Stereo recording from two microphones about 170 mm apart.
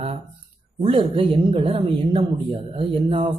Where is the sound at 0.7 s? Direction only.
30° right (ahead or behind).